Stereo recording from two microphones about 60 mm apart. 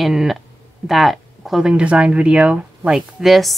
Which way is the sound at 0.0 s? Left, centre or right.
Centre.